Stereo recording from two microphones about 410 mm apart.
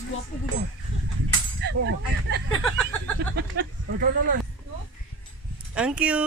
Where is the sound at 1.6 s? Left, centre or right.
Right.